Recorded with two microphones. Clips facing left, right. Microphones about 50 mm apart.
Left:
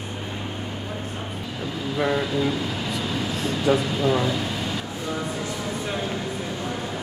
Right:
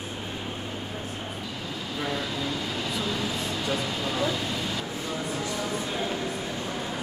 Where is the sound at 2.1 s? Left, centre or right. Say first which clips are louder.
Left 7 dB; centre.